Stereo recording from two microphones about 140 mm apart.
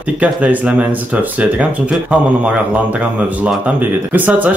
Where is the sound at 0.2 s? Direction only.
10° right (ahead or behind).